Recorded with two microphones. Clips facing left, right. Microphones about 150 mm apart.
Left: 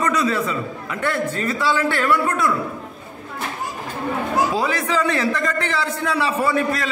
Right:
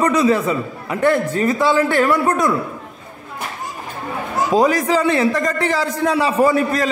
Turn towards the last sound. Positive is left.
turn(degrees=-40)  # may be behind; listen again after turning